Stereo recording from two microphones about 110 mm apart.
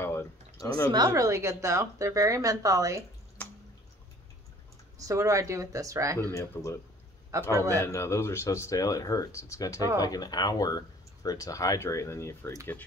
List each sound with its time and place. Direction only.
0.0 s a sound: 25° left (ahead or behind)
0.9 s speech: 30° right (ahead or behind)
4.9 s speech: 30° right (ahead or behind)
6.3 s speech: 25° left (ahead or behind)
7.5 s speech: 30° right (ahead or behind)
7.8 s speech: 25° left (ahead or behind)